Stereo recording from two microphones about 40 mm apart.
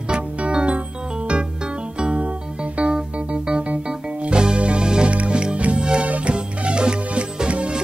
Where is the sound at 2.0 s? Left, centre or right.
Right.